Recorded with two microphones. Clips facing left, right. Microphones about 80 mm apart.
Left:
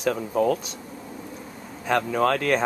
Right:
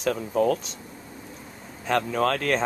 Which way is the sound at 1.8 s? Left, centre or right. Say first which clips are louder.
Left 1 dB; centre.